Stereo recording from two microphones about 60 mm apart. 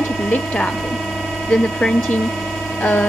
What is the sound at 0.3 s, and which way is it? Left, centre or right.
Speech, centre.